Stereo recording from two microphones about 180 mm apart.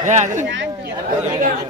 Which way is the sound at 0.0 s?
45° right (ahead or behind).